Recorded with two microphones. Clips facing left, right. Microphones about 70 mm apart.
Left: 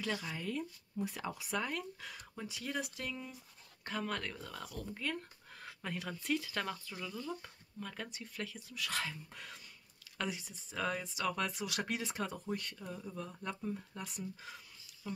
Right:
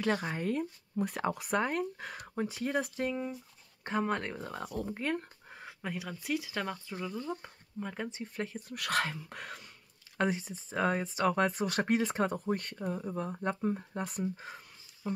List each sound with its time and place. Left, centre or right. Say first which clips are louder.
0.0 s speech: right 8 dB; right
5.5 s a sound: right 4 dB; centre
6.2 s speech: right 2 dB; centre
6.9 s speech: right 5 dB; right
8.5 s speech: right 9 dB; right
9.4 s speech: right 7 dB; right
10.1 s speech: right 9 dB; right